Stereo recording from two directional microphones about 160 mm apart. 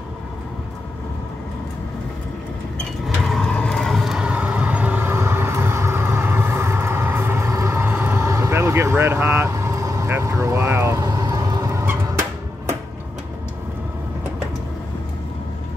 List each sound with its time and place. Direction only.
3.2 s vehicle: centre (ahead or behind); by 11.8 s 20° right (ahead or behind)